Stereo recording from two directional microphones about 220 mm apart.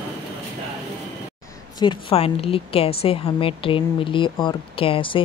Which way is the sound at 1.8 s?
25° left (ahead or behind).